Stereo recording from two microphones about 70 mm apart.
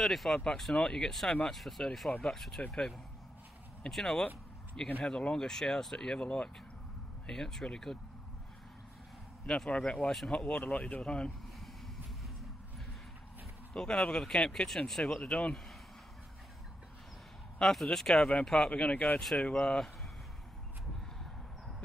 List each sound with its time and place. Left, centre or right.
0.0 s speech: centre
3.8 s speech: centre
9.7 s speech: centre
13.7 s speech: centre
17.6 s speech: centre
21.2 s a sound: centre